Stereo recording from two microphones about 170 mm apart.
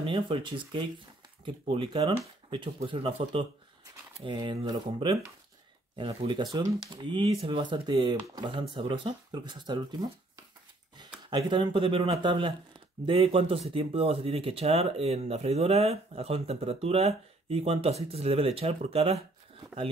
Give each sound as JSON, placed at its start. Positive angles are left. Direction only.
{"t": 0.0, "sound": "speech", "side_deg": -30}
{"t": 11.2, "sound": "speech", "side_deg": -30}